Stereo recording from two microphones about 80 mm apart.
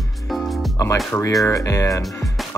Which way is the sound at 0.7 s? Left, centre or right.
Left.